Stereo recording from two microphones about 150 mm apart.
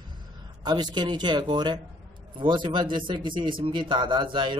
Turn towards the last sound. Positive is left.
turn(degrees=-30)  # may be behind; listen again after turning